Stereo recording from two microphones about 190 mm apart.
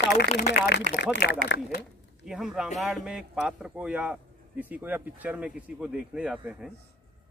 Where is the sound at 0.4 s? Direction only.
60° left (ahead or behind).